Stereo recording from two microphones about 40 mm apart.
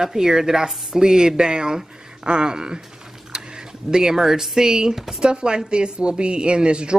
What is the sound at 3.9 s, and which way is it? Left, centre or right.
Speech, centre.